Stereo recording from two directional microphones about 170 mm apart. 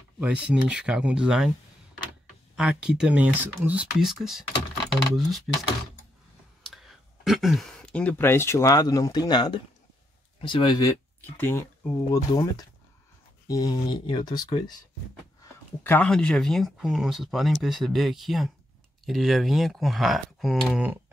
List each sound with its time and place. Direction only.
0.2 s speech: 5° right (ahead or behind)
2.5 s speech: 5° right (ahead or behind)
7.2 s speech: centre (ahead or behind)
12.1 s speech: 25° left (ahead or behind)
15.8 s speech: 10° left (ahead or behind)